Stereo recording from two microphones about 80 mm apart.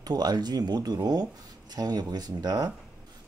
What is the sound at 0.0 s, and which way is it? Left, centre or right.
Speech, right.